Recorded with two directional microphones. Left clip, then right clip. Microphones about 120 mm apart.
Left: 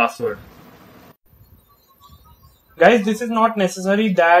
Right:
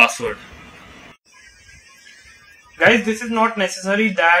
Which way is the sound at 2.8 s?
90° left.